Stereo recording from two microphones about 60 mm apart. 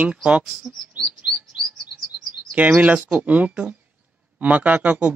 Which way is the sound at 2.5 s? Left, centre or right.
Right.